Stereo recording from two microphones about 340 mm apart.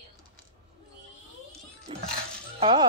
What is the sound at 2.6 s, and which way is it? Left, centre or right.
Speech, centre.